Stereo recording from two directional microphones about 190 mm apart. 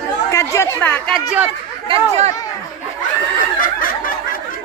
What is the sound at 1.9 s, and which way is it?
Speech, 35° right (ahead or behind).